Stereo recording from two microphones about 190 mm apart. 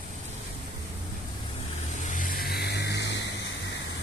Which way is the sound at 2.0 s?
40° left (ahead or behind).